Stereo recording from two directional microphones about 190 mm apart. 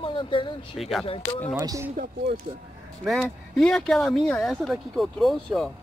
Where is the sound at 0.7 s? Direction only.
Centre (ahead or behind).